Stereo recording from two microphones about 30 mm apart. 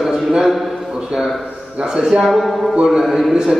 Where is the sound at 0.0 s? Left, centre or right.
Centre.